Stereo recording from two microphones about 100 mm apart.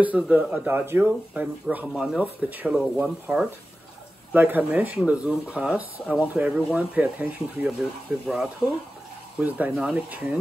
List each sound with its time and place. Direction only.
0.0 s speech: 15° right (ahead or behind)
9.4 s speech: 15° right (ahead or behind)